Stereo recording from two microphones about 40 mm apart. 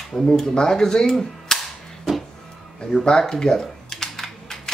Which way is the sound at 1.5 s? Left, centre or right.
Centre.